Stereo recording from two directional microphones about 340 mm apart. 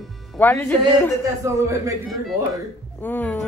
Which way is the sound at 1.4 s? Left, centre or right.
Centre.